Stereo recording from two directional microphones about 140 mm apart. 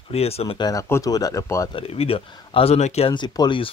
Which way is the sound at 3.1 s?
30° left (ahead or behind).